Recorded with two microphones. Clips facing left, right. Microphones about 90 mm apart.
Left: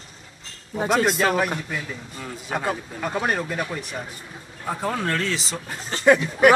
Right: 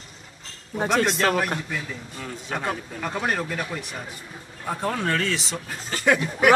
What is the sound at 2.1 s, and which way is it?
Speech, 5° left (ahead or behind).